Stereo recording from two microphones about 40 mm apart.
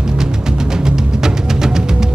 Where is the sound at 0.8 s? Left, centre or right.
Centre.